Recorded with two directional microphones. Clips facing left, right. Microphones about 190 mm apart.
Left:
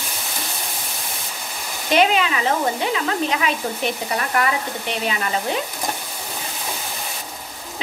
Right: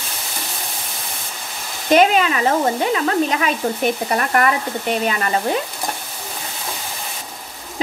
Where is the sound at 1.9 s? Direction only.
45° right (ahead or behind).